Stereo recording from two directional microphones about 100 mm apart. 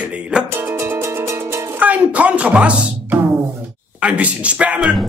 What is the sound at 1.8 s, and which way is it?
A man's voice, 15° right (ahead or behind).